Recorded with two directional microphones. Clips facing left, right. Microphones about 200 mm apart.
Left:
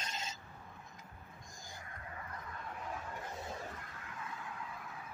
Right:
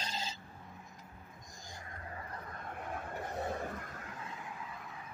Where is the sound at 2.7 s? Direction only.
55° right (ahead or behind).